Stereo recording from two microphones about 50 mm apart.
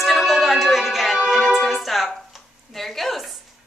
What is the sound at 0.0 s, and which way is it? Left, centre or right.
Music, centre.